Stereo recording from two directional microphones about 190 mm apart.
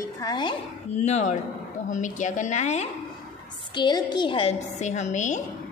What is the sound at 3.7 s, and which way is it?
A woman's voice, 25° left (ahead or behind).